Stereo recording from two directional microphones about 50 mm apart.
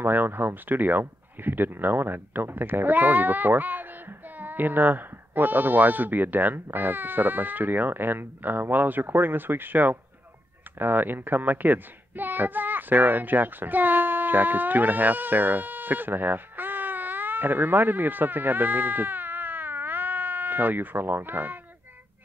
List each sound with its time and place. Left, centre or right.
0.0 s a child's voice: right